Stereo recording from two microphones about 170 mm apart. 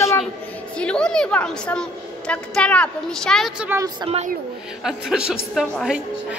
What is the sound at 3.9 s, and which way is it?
Speech, 35° right (ahead or behind).